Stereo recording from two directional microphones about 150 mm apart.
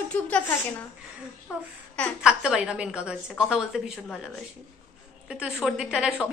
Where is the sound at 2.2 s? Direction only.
5° right (ahead or behind).